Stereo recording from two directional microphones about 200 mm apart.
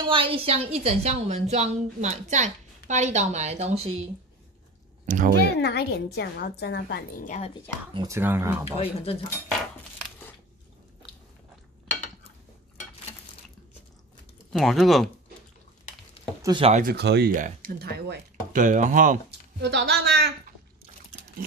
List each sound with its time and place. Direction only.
0.0 s a woman's voice: 25° right (ahead or behind)
5.0 s speech: 40° right (ahead or behind)
5.6 s a woman's voice: 55° left (ahead or behind); by 7.5 s 35° left (ahead or behind)
7.9 s speech: 15° right (ahead or behind)
8.7 s speech: 30° left (ahead or behind)
14.5 s speech: centre (ahead or behind)
16.4 s speech: 25° right (ahead or behind)
16.7 s speech: 50° right (ahead or behind)
18.6 s a woman's voice: 40° right (ahead or behind)
19.6 s speech: 55° right (ahead or behind)